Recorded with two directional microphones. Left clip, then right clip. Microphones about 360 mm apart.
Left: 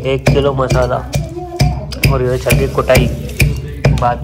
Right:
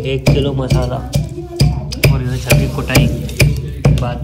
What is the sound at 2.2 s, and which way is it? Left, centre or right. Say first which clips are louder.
Speech: left 3 dB; centre.